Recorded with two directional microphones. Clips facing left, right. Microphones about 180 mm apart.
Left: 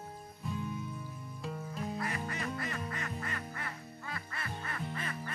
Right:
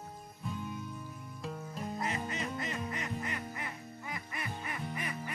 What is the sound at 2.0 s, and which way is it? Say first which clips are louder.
Music: right 1 dB; 20° right (ahead or behind).